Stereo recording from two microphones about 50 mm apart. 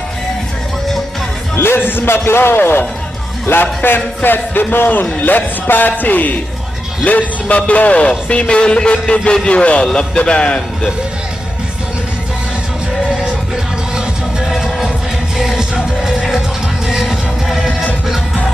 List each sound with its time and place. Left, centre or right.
1.5 s a man's voice: left; by 10.9 s centre
13.9 s music: centre